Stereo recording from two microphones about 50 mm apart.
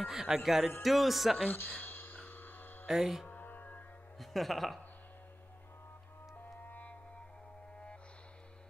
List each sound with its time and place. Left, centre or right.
0.0 s music: centre
0.8 s speech: centre
1.5 s hum: left
2.9 s music: centre
3.3 s music: left
4.2 s speech: centre
6.3 s music: left